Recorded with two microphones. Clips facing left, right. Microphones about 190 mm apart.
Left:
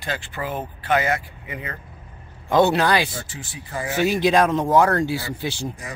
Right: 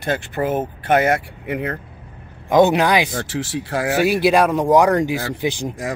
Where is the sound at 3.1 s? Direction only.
80° right.